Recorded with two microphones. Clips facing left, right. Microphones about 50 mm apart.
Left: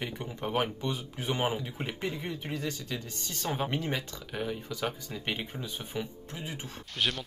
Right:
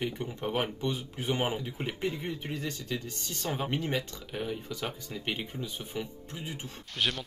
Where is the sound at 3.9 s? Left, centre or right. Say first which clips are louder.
Right 1 dB; centre.